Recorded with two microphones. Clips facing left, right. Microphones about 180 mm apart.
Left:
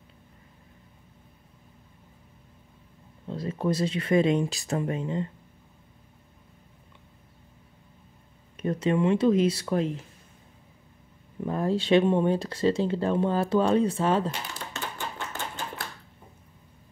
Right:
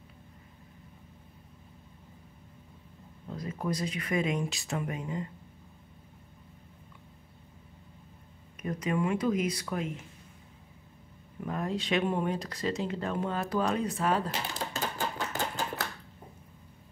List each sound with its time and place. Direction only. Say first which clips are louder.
3.3 s speech: left 6 dB; 30° left (ahead or behind)
8.5 s speech: left 6 dB; 30° left (ahead or behind)
11.4 s speech: left 7 dB; 30° left (ahead or behind)
14.6 s typewriter: right 2 dB; 40° right (ahead or behind)